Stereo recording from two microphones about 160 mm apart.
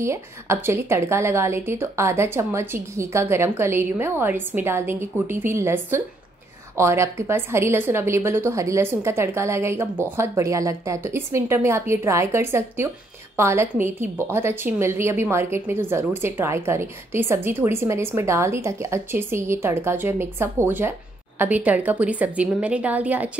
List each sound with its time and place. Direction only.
0.0 s a woman's voice: 15° right (ahead or behind)